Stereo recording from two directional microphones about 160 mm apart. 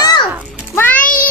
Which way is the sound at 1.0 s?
60° left (ahead or behind).